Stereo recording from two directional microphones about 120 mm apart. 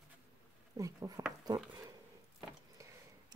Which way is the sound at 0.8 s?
30° right (ahead or behind).